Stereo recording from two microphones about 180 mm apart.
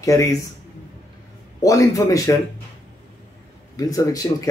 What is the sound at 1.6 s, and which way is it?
Speech, 20° left (ahead or behind).